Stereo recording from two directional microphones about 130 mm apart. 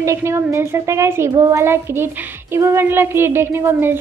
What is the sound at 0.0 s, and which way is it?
A woman's voice, 20° right (ahead or behind).